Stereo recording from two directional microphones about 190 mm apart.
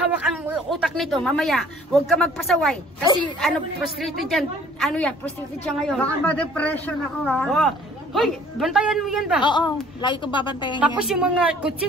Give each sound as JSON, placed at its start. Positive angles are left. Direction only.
{"t": 0.0, "sound": "speech", "side_deg": -5}
{"t": 4.0, "sound": "a woman's voice", "side_deg": 0}
{"t": 9.4, "sound": "a woman's voice", "side_deg": 25}
{"t": 11.0, "sound": "speech", "side_deg": -5}